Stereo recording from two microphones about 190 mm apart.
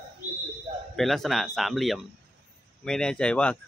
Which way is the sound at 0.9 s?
Centre (ahead or behind).